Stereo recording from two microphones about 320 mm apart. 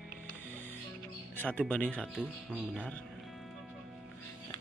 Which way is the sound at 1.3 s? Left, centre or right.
Centre.